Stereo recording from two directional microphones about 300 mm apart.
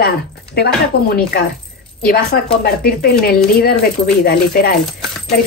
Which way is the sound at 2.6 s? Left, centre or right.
Left.